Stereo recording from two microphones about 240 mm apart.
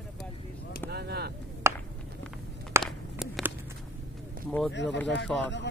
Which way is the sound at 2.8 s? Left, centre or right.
Centre.